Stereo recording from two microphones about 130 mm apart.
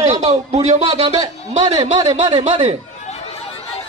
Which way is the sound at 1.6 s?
30° right (ahead or behind).